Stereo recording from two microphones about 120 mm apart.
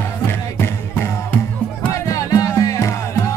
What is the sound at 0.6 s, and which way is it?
Music, 20° left (ahead or behind).